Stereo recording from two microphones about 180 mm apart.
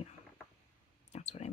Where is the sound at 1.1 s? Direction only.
40° left (ahead or behind).